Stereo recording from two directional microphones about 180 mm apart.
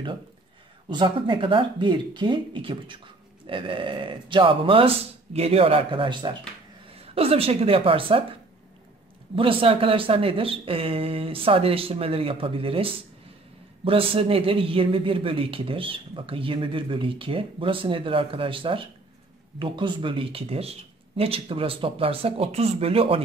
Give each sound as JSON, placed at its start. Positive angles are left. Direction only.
{"t": 0.8, "sound": "speech", "side_deg": -25}